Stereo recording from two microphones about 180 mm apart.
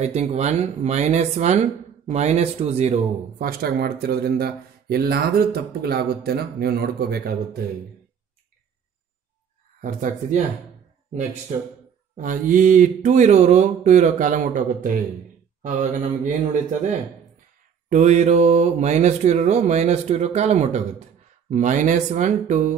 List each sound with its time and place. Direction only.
0.0 s speech: 40° right (ahead or behind)
3.3 s speech: 60° right (ahead or behind)
9.8 s speech: 45° right (ahead or behind)
12.2 s speech: 50° right (ahead or behind)
17.8 s speech: 40° right (ahead or behind)